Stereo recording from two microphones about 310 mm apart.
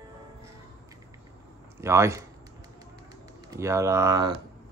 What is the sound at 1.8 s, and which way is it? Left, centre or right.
Speech, centre.